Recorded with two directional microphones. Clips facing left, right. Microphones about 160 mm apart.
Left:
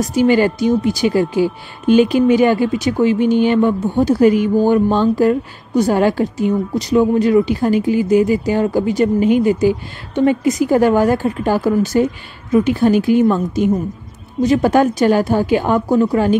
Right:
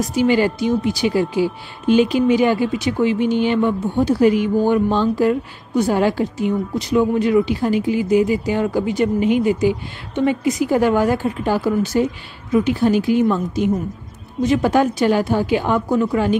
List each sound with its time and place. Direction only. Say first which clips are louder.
0.1 s a woman's voice: left 4 dB; 45° left (ahead or behind)